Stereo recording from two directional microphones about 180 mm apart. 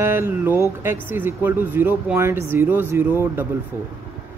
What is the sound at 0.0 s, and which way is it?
Speech, 15° right (ahead or behind).